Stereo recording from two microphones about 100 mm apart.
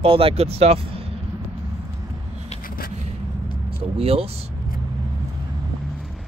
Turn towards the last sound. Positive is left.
turn(degrees=-80)